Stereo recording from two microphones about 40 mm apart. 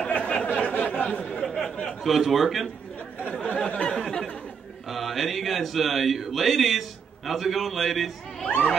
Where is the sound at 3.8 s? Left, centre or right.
Centre.